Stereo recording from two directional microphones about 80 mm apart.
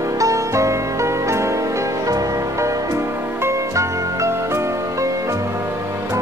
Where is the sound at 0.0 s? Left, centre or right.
Right.